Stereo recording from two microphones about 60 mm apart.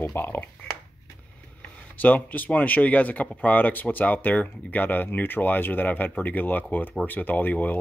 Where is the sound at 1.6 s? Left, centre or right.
Left.